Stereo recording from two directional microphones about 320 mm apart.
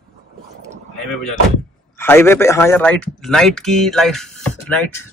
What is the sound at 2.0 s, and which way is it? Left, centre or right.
Speech, centre.